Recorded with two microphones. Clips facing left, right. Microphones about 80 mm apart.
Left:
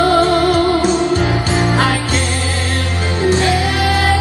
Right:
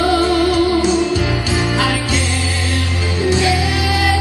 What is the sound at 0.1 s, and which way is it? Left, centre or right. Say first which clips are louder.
Music: left 2 dB; left.